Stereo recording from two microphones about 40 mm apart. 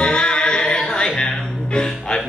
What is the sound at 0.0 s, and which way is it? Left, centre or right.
Music, left.